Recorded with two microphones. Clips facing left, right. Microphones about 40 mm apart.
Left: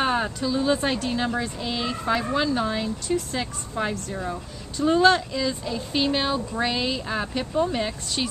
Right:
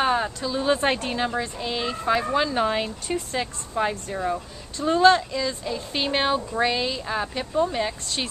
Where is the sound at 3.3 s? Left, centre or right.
Centre.